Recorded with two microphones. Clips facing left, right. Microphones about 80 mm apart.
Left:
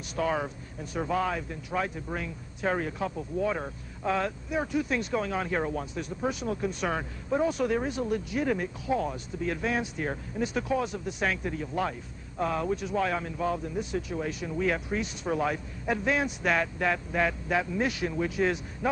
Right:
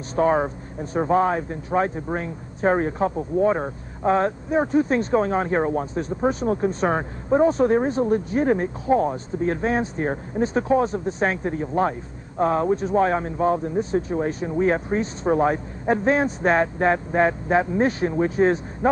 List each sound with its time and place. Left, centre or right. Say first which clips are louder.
0.1 s speech: right 9 dB; right